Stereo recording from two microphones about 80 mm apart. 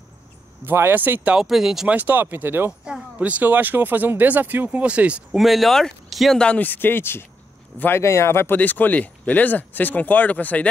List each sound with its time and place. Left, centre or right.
0.7 s speech: right
1.3 s speech: centre
1.9 s speech: right
2.8 s speech: centre
5.4 s speech: centre
6.4 s speech: centre; by 8.5 s left
8.5 s speech: left